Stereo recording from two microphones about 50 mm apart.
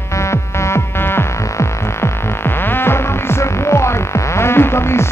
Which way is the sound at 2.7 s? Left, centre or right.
Left.